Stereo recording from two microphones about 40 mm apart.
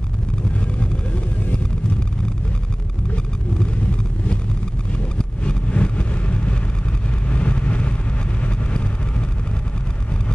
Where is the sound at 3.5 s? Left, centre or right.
Left.